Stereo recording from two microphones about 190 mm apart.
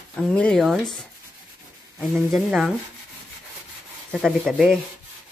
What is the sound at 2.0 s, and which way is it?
Speech, centre (ahead or behind).